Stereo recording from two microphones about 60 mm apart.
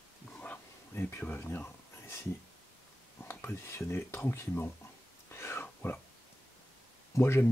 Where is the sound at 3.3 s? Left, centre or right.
Left.